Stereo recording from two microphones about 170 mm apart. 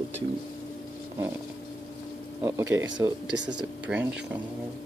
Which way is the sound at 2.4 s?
15° right (ahead or behind).